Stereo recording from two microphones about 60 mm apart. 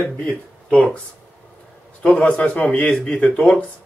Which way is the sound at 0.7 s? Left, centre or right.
Centre.